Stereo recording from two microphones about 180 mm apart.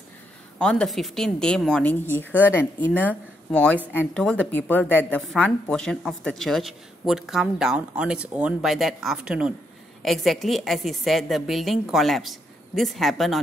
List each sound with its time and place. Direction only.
0.6 s a woman's voice: 5° left (ahead or behind)